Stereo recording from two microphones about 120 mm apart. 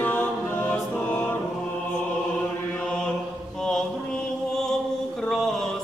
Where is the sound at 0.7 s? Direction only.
15° left (ahead or behind).